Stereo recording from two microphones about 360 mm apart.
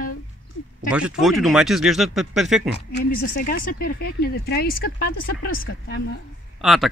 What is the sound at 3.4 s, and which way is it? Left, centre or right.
Speech, left.